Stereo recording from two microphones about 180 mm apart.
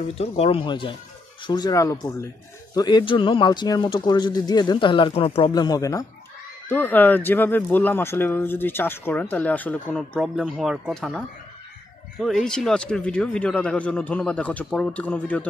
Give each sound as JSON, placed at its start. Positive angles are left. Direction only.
{"t": 0.2, "sound": "speech", "side_deg": 35}